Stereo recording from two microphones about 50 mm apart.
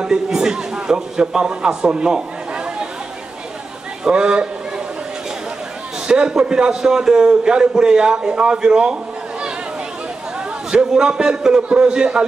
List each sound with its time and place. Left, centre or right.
0.0 s a man's voice: centre
4.0 s a sound: centre
6.0 s a man's voice: centre
10.7 s a man's voice: centre